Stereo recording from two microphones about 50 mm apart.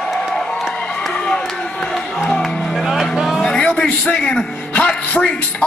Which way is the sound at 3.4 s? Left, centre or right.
Centre.